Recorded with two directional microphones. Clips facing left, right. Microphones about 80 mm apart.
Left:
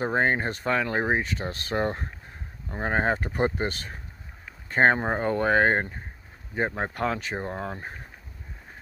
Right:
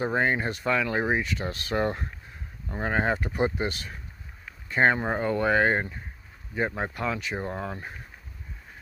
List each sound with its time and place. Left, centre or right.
0.0 s speech: left